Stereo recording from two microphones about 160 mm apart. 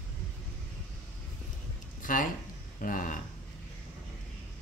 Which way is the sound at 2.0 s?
55° left (ahead or behind).